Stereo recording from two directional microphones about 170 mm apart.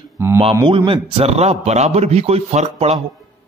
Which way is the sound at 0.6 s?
30° right (ahead or behind).